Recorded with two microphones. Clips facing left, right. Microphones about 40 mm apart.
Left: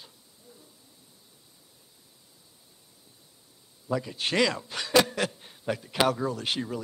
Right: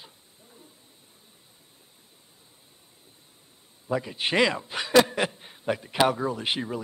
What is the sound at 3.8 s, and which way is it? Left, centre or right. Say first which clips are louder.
Speech: right 2 dB; right.